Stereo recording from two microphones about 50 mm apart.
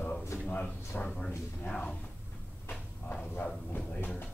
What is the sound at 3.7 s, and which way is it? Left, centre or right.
Speech, left.